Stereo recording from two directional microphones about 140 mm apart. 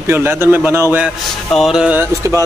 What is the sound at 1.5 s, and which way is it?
Speech, centre (ahead or behind).